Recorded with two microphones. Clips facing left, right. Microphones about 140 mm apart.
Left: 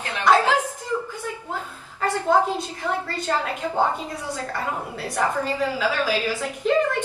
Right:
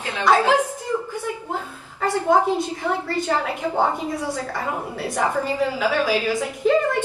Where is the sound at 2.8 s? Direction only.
15° right (ahead or behind).